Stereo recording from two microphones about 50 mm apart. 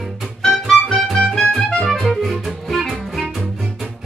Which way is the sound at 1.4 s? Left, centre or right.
Centre.